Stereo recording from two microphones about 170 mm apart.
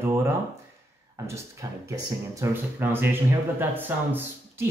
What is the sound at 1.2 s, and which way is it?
Speech, 20° right (ahead or behind).